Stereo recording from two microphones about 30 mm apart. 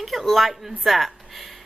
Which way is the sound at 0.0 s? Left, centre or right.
Centre.